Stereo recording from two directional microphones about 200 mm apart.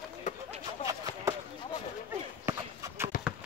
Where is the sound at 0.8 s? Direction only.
15° right (ahead or behind).